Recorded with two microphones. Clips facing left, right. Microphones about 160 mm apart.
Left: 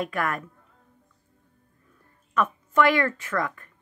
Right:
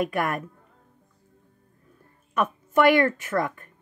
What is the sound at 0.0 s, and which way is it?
Speech, 15° right (ahead or behind).